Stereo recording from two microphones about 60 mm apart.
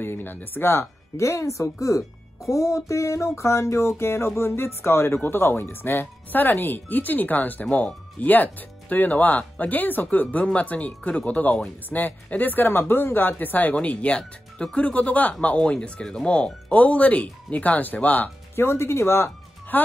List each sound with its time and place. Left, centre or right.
0.0 s speech: left
1.1 s speech: left
10.2 s speech: centre
13.7 s speech: centre
18.6 s speech: left
19.7 s speech: left